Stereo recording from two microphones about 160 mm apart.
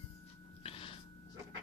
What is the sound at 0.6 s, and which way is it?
Snort, 35° left (ahead or behind).